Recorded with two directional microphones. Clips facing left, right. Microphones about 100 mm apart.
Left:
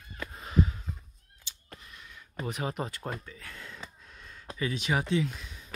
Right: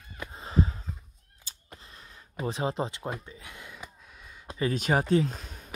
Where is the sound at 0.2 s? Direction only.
25° right (ahead or behind).